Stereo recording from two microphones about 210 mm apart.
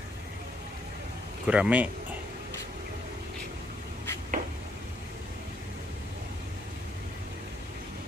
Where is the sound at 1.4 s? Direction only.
5° right (ahead or behind).